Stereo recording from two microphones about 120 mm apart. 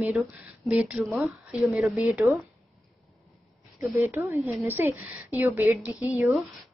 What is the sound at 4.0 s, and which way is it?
Speech, 20° right (ahead or behind).